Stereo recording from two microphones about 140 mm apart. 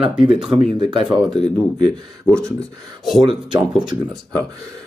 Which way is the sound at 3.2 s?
35° right (ahead or behind).